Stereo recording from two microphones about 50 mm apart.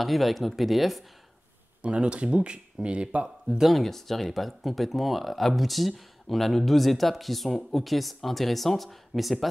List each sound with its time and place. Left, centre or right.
0.0 s speech: centre
1.8 s speech: right
3.5 s speech: centre